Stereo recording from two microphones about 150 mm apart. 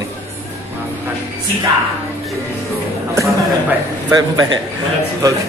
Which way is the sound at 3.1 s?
20° right (ahead or behind).